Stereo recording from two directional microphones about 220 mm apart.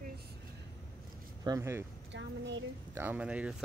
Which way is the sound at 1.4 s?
15° right (ahead or behind).